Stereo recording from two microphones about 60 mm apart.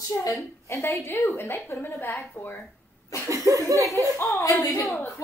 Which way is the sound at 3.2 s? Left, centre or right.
Right.